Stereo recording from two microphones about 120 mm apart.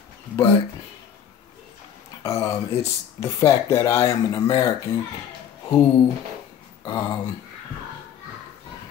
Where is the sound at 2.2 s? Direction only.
30° left (ahead or behind).